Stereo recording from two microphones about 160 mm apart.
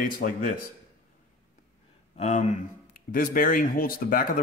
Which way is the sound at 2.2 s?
45° left (ahead or behind).